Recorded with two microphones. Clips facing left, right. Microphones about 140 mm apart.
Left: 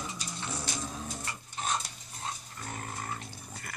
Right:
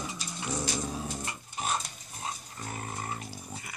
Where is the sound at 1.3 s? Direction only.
10° right (ahead or behind).